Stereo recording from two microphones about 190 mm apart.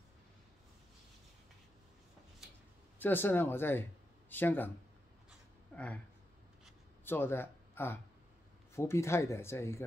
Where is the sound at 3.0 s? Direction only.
10° left (ahead or behind).